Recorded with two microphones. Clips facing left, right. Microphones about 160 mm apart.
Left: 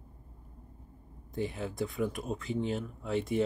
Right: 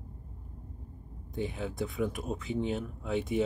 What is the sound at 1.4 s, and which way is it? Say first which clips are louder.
Speech: even; centre (ahead or behind).